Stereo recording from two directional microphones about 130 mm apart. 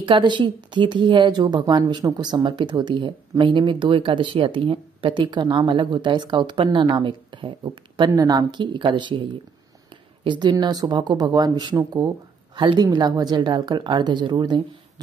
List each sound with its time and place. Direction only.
0.0 s a woman's voice: 35° right (ahead or behind)
10.2 s a woman's voice: 35° right (ahead or behind)